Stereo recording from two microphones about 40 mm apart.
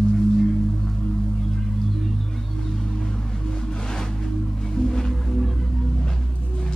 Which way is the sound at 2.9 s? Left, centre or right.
Centre.